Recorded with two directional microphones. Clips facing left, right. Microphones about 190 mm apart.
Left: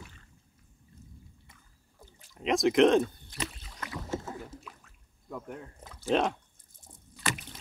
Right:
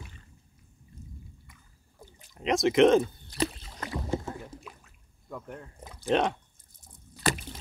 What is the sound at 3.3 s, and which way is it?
Rowboat, 35° right (ahead or behind).